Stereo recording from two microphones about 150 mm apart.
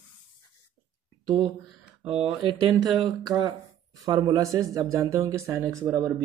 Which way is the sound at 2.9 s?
25° right (ahead or behind).